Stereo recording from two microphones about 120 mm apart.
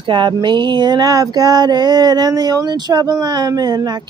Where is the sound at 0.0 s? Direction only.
40° right (ahead or behind).